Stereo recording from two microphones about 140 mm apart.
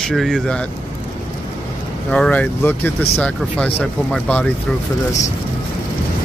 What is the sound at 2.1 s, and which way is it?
Speech, 10° left (ahead or behind).